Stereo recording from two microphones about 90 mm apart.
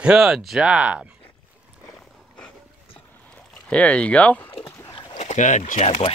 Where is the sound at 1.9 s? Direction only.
5° left (ahead or behind).